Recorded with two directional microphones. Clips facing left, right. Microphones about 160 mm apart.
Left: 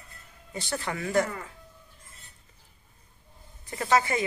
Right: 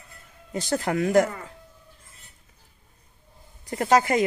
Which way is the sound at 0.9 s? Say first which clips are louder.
Right 6 dB; 60° right (ahead or behind).